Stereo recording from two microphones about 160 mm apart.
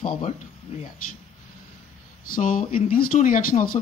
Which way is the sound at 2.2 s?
60° left (ahead or behind).